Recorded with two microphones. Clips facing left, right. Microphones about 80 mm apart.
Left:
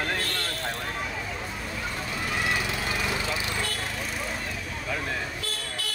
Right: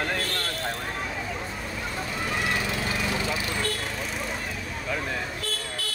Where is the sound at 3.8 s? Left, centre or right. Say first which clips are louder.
Right 1 dB; centre.